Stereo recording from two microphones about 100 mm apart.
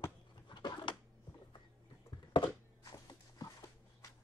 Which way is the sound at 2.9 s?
35° left (ahead or behind).